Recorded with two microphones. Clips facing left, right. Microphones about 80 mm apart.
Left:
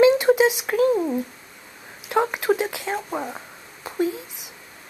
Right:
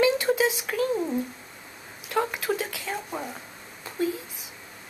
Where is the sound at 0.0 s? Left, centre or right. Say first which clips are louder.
Left 7 dB; left.